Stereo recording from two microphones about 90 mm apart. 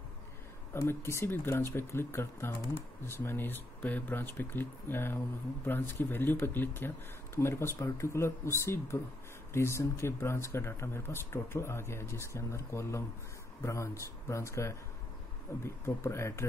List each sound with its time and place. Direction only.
0.8 s speech: 30° left (ahead or behind)